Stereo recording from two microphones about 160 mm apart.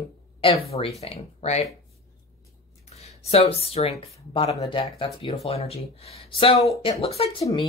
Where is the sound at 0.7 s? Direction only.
40° left (ahead or behind).